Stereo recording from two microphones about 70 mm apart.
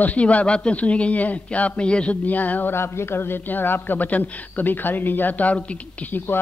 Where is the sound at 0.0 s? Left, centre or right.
Left.